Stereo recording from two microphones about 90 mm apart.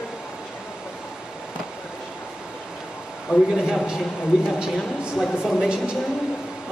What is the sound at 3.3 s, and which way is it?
Speech, 10° right (ahead or behind).